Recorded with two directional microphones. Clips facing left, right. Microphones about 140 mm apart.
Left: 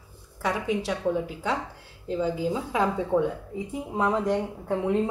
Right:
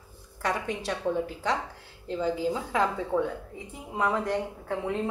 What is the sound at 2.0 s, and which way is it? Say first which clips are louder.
A woman's voice: left 1 dB; 10° left (ahead or behind).